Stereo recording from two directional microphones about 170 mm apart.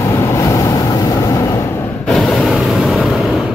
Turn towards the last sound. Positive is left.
turn(degrees=0)  # may be behind; listen again after turning